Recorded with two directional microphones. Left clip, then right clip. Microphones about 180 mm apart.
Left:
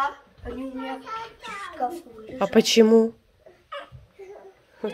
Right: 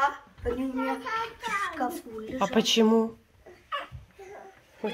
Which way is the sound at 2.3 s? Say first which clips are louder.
Left 6 dB; 40° left (ahead or behind).